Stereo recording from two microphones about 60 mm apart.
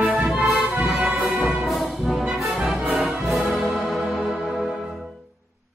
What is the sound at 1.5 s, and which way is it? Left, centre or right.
Brass instrument, centre.